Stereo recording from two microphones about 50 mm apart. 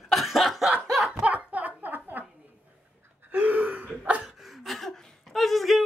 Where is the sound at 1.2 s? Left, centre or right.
Right.